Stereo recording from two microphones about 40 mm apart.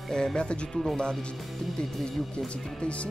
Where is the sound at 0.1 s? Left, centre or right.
Centre.